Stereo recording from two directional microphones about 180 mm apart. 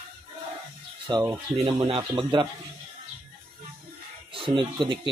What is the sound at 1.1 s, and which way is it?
Speech, 20° right (ahead or behind).